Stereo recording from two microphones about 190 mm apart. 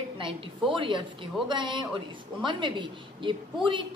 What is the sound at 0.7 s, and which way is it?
A woman's voice, 25° right (ahead or behind).